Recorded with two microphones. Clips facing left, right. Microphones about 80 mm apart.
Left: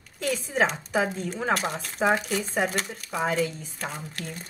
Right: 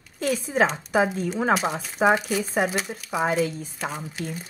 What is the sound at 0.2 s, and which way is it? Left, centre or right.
Speech, centre.